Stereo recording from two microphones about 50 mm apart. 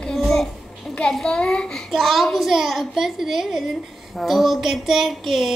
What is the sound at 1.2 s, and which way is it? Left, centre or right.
Speech, centre.